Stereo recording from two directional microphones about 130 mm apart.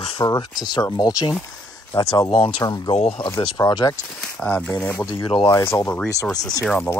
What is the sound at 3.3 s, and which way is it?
Speech, 35° left (ahead or behind).